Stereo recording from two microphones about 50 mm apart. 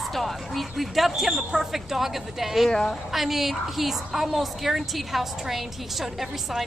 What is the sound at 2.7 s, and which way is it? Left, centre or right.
Speech, centre.